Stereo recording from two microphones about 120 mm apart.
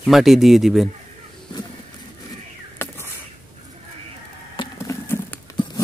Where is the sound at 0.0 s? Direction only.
Centre (ahead or behind).